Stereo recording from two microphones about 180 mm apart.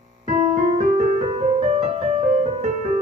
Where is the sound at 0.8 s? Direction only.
40° right (ahead or behind).